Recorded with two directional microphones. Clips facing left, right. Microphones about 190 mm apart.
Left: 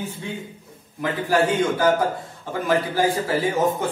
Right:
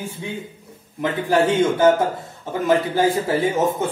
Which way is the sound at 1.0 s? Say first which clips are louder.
Right 2 dB; 25° right (ahead or behind).